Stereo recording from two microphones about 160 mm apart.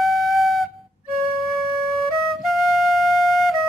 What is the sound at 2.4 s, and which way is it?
Music, centre (ahead or behind).